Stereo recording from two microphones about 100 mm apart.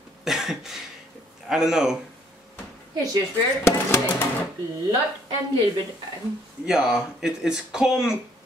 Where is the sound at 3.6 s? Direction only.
25° left (ahead or behind).